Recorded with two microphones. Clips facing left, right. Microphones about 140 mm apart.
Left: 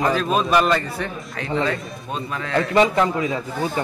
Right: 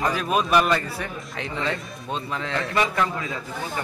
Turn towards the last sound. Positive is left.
turn(degrees=20)  # may be behind; listen again after turning